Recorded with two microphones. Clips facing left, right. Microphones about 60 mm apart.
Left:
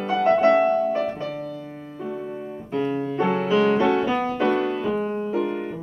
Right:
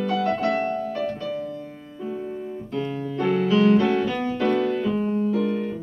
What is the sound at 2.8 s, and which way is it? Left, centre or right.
Music, left.